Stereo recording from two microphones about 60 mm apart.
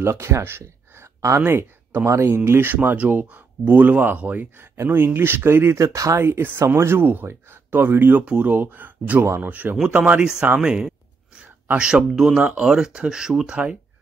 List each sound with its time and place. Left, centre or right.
0.0 s speech: right
1.4 s speech: right
4.8 s speech: right
8.3 s speech: right
11.6 s a sound: right
11.9 s speech: centre